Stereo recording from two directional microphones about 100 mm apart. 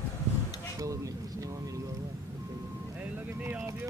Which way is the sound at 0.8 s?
35° right (ahead or behind).